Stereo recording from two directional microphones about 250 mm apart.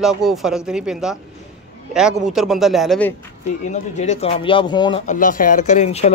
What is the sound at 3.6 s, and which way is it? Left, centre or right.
Speech, left.